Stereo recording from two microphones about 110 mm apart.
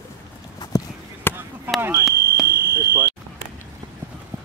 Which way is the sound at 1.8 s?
20° right (ahead or behind).